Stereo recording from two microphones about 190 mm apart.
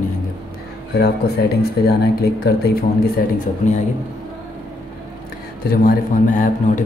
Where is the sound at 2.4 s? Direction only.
55° left (ahead or behind).